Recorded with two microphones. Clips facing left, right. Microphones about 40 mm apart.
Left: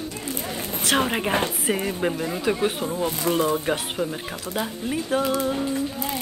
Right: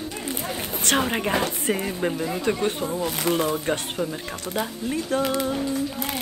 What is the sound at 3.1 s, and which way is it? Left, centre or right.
Speech, right.